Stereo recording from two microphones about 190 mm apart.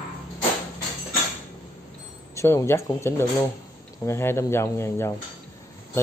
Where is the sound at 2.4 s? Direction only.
15° left (ahead or behind).